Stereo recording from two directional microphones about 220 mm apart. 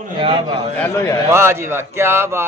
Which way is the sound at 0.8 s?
10° left (ahead or behind).